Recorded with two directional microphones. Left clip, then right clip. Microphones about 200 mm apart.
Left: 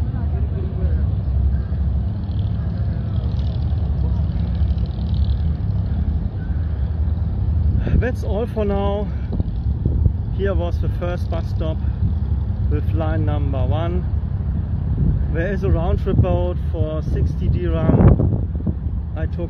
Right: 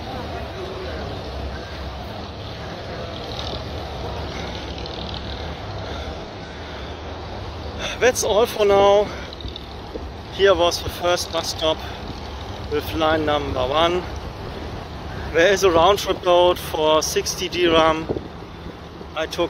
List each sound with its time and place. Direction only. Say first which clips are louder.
7.8 s speech: right 8 dB; 15° right (ahead or behind)
10.4 s speech: right 9 dB; 15° right (ahead or behind)
12.7 s speech: right 7 dB; 15° right (ahead or behind)
15.3 s speech: right 10 dB; 20° right (ahead or behind)